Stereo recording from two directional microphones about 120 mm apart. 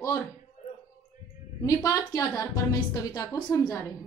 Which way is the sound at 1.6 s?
30° left (ahead or behind).